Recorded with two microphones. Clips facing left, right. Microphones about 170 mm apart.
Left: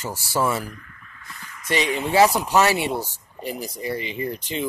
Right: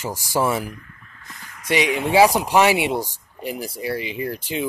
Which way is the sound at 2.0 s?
10° right (ahead or behind).